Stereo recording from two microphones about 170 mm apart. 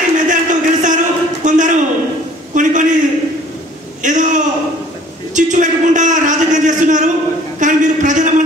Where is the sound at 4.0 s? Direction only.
45° right (ahead or behind).